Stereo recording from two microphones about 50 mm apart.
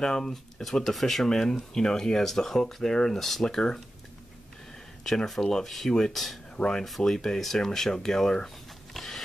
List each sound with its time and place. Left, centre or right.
0.0 s speech: centre
5.0 s speech: centre
6.5 s speech: centre
8.9 s a sound: centre